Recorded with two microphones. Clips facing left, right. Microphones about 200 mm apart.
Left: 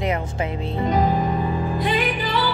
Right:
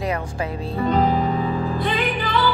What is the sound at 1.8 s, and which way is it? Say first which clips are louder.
Music: even; 15° left (ahead or behind).